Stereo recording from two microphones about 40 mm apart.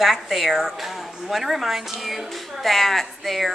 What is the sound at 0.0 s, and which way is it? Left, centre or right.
A woman's voice, centre.